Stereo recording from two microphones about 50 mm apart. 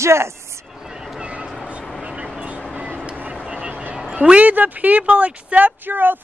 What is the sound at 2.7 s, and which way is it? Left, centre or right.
Vehicle, right.